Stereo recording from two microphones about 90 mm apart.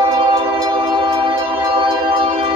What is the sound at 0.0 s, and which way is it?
Music, 65° right (ahead or behind).